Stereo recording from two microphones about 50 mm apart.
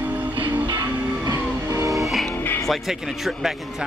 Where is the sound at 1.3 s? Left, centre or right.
Right.